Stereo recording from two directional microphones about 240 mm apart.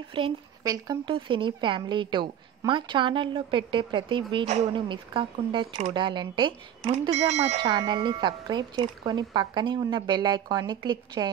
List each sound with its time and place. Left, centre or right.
0.1 s speech: centre
7.6 s speech: centre